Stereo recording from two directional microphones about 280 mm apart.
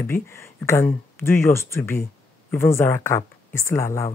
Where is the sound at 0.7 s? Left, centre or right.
Centre.